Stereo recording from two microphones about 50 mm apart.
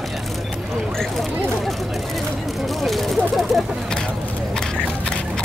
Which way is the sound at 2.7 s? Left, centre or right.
Centre.